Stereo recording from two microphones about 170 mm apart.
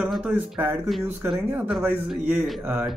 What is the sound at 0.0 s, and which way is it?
Speech, 5° right (ahead or behind).